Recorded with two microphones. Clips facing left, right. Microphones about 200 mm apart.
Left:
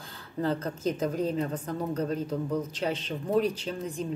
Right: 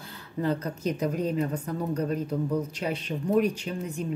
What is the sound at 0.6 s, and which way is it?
Speech, 25° left (ahead or behind).